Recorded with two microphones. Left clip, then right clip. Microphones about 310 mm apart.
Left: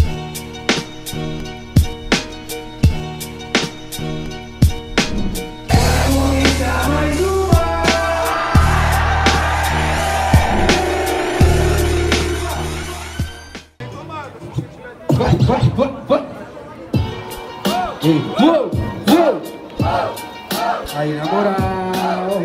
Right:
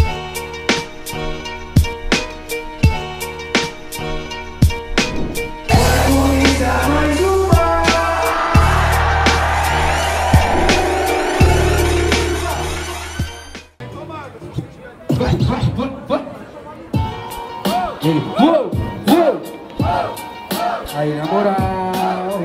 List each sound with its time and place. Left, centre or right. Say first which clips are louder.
0.0 s music: right 4 dB; centre
15.0 s music: left 3 dB; centre
16.9 s music: right 1 dB; right